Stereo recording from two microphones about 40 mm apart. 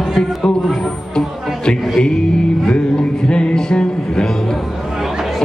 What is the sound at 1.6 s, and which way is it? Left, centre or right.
Music, left.